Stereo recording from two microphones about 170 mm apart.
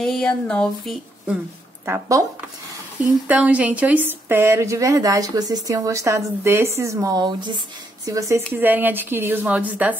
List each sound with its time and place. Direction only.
0.0 s speech: 5° left (ahead or behind)
1.9 s speech: 20° right (ahead or behind)
3.3 s a woman's voice: 10° right (ahead or behind)